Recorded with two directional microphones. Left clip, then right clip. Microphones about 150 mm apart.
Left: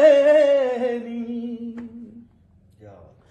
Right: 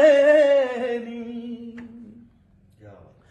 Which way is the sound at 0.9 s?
45° left (ahead or behind).